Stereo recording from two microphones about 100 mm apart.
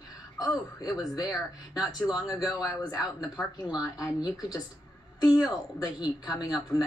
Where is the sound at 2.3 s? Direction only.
40° left (ahead or behind).